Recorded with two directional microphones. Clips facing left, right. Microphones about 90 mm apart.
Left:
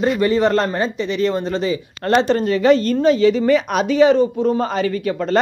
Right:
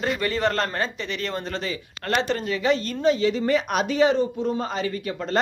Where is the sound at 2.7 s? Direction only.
60° left (ahead or behind).